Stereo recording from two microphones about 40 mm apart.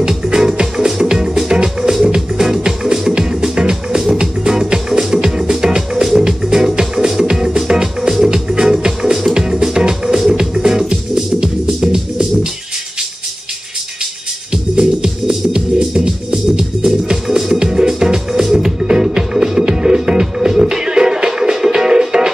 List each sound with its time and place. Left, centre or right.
0.0 s music: centre
14.5 s music: centre